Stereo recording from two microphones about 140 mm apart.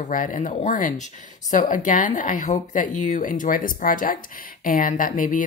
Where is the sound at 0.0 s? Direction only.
70° left (ahead or behind).